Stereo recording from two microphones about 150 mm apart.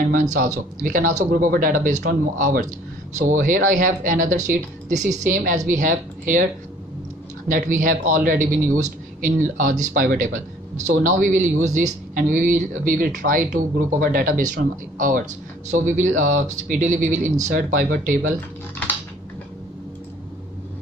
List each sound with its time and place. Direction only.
0.1 s a woman's voice: 60° right (ahead or behind)
7.4 s a woman's voice: 60° right (ahead or behind)